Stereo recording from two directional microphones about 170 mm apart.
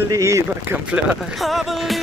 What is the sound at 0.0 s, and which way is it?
Speech, 15° right (ahead or behind).